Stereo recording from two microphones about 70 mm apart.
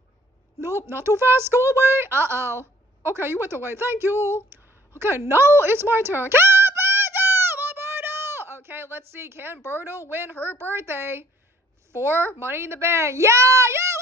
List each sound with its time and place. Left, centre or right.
0.6 s a woman's voice: right